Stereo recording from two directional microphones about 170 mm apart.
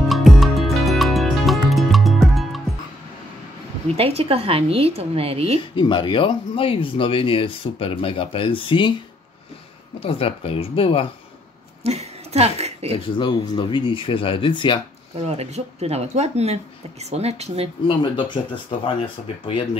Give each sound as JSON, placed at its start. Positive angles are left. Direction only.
{"t": 0.1, "sound": "music", "side_deg": 0}
{"t": 3.9, "sound": "a woman's voice", "side_deg": -35}
{"t": 5.8, "sound": "speech", "side_deg": 25}
{"t": 9.9, "sound": "speech", "side_deg": 35}
{"t": 11.8, "sound": "speech", "side_deg": -40}
{"t": 12.9, "sound": "speech", "side_deg": 30}
{"t": 15.2, "sound": "a woman's voice", "side_deg": -40}
{"t": 17.8, "sound": "speech", "side_deg": 25}